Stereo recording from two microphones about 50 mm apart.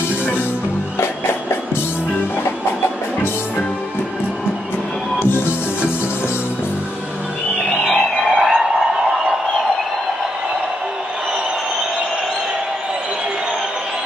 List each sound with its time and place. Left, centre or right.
1.0 s music: left
5.3 s music: left
7.9 s a sound: centre